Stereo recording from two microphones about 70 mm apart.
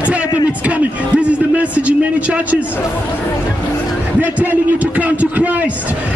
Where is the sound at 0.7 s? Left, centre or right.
Centre.